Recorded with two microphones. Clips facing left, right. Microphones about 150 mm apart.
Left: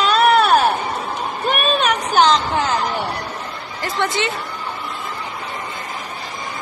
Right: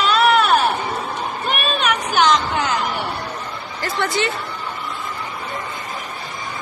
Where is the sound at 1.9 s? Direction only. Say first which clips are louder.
Left 1 dB; 35° left (ahead or behind).